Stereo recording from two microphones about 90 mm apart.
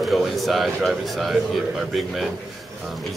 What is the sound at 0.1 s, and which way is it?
Speech, centre (ahead or behind).